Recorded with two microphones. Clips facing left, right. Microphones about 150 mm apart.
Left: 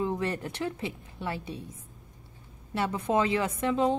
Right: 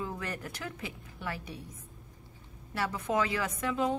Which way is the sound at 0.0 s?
25° left (ahead or behind).